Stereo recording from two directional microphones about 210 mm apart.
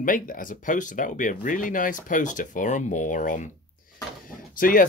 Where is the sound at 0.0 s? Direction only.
40° left (ahead or behind).